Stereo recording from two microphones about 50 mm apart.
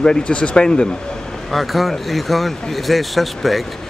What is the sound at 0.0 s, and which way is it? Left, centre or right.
Speech, centre.